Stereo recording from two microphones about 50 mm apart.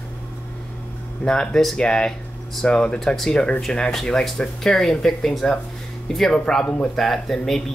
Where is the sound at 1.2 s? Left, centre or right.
Centre.